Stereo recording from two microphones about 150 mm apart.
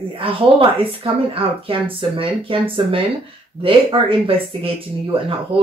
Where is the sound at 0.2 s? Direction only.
35° right (ahead or behind).